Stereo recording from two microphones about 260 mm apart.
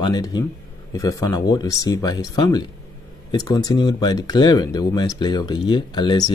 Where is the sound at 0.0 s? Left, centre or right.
Centre.